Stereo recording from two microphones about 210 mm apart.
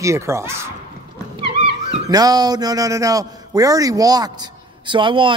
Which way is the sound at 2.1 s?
20° right (ahead or behind).